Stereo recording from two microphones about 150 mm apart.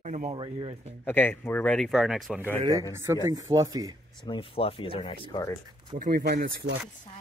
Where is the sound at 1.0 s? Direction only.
15° left (ahead or behind).